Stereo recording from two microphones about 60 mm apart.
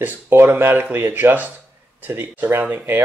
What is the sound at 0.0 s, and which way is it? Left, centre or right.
Speech, right.